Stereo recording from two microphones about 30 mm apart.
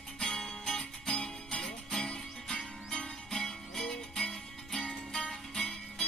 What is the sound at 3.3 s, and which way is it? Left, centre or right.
Music, centre.